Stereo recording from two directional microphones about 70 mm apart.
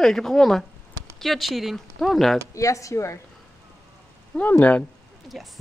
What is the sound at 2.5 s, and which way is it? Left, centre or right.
Speech, left.